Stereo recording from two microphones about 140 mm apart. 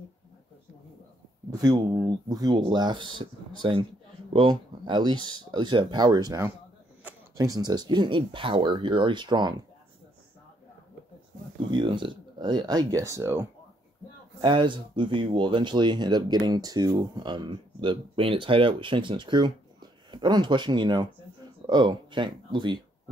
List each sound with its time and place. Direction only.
1.5 s speech: 30° right (ahead or behind)
11.7 s speech: 35° right (ahead or behind); by 13.5 s 20° right (ahead or behind)
14.4 s speech: 35° right (ahead or behind)